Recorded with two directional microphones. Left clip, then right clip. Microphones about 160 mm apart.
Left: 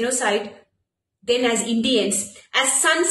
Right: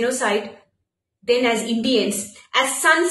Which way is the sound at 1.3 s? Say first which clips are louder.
Right 1 dB; 30° left (ahead or behind).